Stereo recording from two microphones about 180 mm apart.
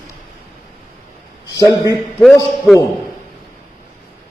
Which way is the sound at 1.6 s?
20° left (ahead or behind).